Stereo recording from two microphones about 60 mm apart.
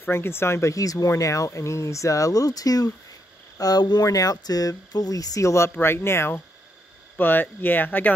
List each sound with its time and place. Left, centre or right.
0.0 s speech: left
5.7 s speech: left